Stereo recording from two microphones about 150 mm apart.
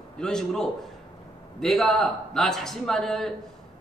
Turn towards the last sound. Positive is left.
turn(degrees=5)  # may be behind; listen again after turning